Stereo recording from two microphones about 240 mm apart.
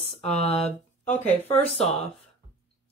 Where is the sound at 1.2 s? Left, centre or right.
Centre.